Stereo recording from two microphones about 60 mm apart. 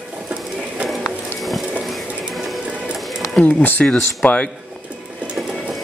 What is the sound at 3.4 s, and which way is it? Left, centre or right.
Speech, left.